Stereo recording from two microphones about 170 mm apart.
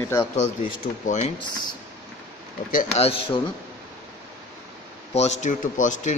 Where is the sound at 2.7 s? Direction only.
40° left (ahead or behind).